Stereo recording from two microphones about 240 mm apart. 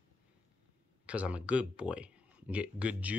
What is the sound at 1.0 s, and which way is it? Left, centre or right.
Speech, centre.